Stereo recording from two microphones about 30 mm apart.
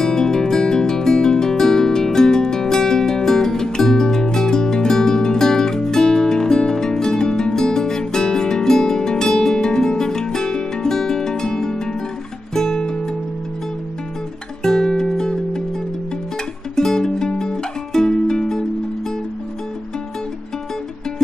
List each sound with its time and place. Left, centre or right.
0.0 s music: left
14.6 s music: centre
16.7 s music: centre